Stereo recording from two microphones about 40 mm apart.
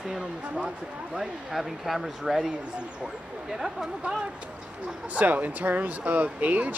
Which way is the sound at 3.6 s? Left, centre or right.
Centre.